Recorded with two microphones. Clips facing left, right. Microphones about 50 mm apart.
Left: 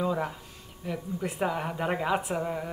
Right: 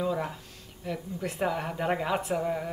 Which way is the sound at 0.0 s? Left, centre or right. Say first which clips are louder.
Left 1 dB; centre.